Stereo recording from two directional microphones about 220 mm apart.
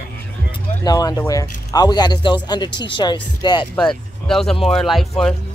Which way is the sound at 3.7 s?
5° left (ahead or behind).